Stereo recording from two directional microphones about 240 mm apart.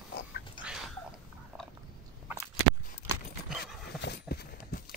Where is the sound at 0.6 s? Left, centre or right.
Centre.